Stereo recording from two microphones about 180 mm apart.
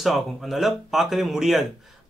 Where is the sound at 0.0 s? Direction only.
Centre (ahead or behind).